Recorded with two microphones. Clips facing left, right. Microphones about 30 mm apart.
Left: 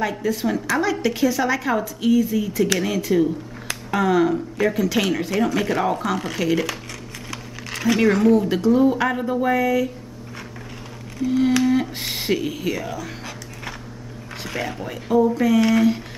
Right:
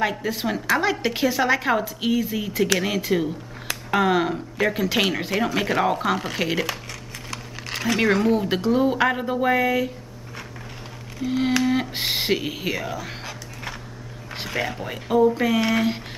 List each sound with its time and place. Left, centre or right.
0.2 s speech: right
7.9 s speech: centre
8.3 s speech: right
11.1 s speech: centre
12.8 s a sound: centre
14.5 s speech: centre